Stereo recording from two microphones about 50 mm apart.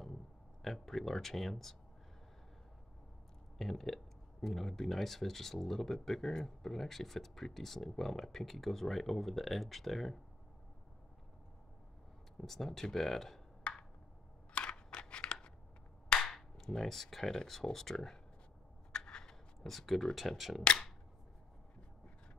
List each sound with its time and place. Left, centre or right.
0.6 s speech: centre
3.5 s speech: centre
12.4 s speech: centre
13.7 s a sound: left
14.5 s scissors: centre
16.1 s speech: centre
18.9 s a sound: centre
19.6 s speech: centre